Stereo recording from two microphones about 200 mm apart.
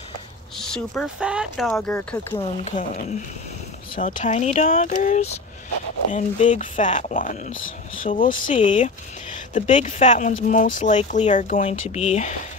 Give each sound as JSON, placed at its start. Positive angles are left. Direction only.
{"t": 0.6, "sound": "speech", "side_deg": 5}
{"t": 1.7, "sound": "speech", "side_deg": 5}
{"t": 2.3, "sound": "speech", "side_deg": 35}